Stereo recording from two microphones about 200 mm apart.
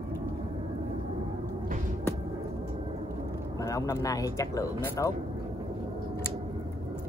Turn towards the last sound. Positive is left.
turn(degrees=15)  # may be behind; listen again after turning